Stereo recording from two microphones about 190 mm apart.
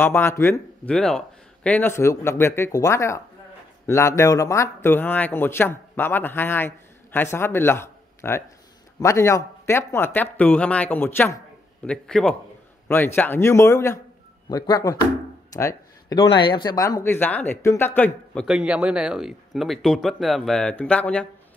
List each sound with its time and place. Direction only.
0.0 s speech: 10° left (ahead or behind)
15.5 s a sound: 20° left (ahead or behind)
16.3 s speech: 25° left (ahead or behind); by 21.3 s 5° left (ahead or behind)